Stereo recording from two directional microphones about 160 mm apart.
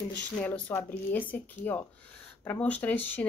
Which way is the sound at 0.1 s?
10° left (ahead or behind).